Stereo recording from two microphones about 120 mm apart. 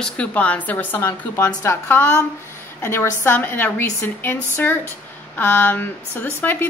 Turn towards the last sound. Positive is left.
turn(degrees=15)  # may be behind; listen again after turning